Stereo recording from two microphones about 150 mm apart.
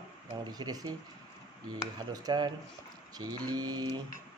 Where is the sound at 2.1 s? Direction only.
25° right (ahead or behind).